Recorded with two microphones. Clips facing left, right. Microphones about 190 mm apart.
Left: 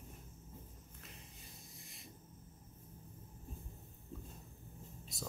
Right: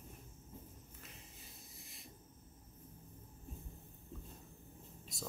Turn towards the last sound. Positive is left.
turn(degrees=0)  # may be behind; listen again after turning